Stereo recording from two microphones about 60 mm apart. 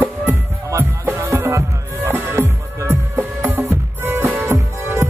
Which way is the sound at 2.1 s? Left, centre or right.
Right.